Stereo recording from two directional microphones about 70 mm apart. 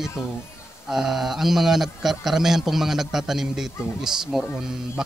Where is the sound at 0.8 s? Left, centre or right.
Centre.